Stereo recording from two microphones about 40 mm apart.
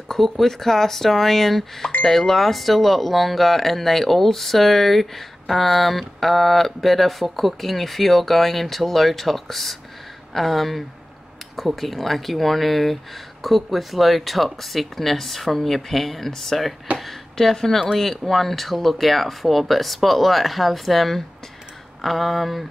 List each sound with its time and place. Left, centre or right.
0.1 s speech: centre